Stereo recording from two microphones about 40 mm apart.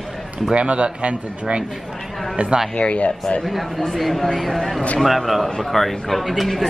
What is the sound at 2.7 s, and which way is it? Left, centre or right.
Speech, left.